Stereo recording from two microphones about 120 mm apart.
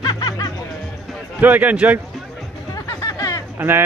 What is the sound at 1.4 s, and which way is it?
Speech, 15° right (ahead or behind).